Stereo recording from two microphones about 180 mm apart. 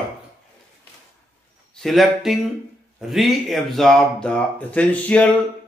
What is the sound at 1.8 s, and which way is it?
Speech, centre (ahead or behind).